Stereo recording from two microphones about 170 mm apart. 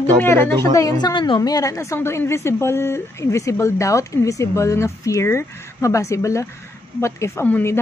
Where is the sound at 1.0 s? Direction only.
25° left (ahead or behind).